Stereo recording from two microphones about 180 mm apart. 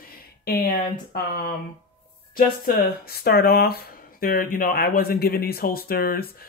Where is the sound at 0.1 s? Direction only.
55° left (ahead or behind).